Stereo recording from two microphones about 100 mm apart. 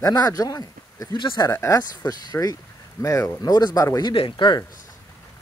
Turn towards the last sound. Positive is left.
turn(degrees=55)  # may be behind; listen again after turning